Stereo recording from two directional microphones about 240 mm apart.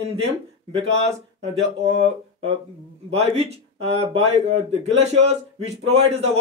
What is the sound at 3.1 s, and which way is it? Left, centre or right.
Speech, right.